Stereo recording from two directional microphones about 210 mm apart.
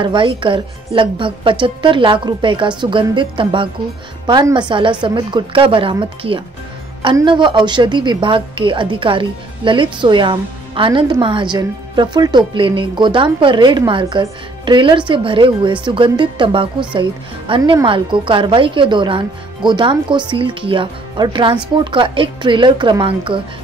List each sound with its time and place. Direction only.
0.0 s speech: 25° right (ahead or behind)